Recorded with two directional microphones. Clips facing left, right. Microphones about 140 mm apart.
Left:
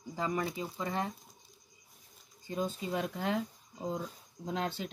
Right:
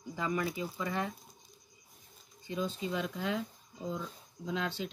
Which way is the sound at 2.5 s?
45° left (ahead or behind).